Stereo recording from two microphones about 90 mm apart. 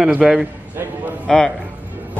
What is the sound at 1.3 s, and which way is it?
Speech, 5° left (ahead or behind).